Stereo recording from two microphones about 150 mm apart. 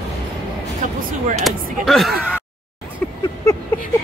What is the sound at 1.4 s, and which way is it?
Speech, centre (ahead or behind).